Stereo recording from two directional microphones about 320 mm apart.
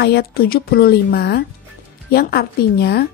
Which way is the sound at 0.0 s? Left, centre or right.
Left.